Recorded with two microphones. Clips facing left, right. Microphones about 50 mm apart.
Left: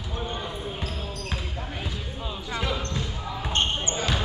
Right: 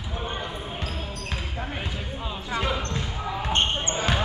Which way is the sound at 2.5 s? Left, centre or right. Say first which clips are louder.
Right 2 dB; centre.